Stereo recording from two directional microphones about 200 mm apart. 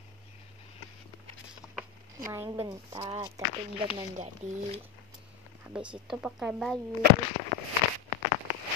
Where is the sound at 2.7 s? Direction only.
25° right (ahead or behind).